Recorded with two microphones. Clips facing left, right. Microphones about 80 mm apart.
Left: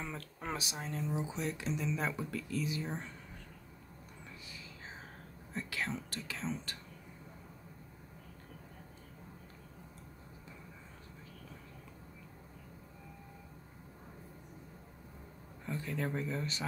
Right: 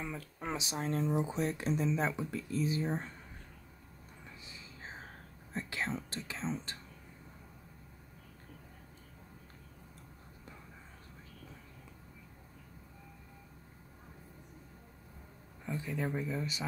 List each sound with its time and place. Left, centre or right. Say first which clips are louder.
0.0 s speech: right 2 dB; centre
0.7 s speech: right 9 dB; right
2.0 s speech: right 2 dB; right
2.6 s speech: right 4 dB; right
4.5 s music: right 3 dB; right
5.5 s speech: right 1 dB; right
15.6 s speech: right 1 dB; centre